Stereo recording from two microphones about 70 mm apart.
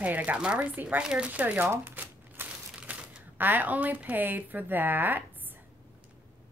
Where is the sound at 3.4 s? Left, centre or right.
Right.